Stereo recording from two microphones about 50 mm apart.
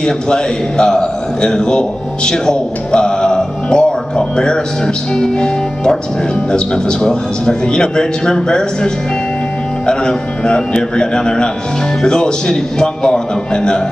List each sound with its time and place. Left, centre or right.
0.0 s a man's voice: centre